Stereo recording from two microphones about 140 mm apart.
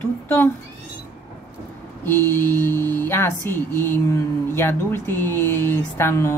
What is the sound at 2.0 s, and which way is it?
Speech, 15° left (ahead or behind).